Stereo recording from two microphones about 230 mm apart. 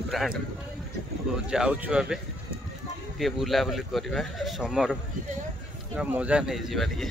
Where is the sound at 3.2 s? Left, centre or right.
Centre.